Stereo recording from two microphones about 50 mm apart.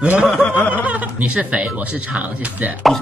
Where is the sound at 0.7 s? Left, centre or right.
Right.